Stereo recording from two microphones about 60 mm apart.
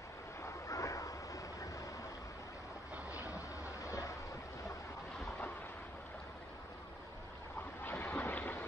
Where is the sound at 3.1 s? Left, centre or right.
Left.